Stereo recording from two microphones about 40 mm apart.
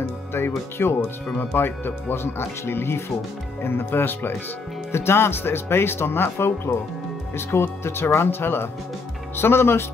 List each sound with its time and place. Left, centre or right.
0.3 s speech: left
3.6 s speech: left
4.9 s speech: left
9.4 s speech: left